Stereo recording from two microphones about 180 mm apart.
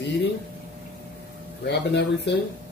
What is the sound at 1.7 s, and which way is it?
Speech, 70° left (ahead or behind).